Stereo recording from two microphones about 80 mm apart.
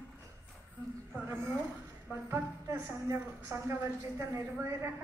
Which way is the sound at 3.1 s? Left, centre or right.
Right.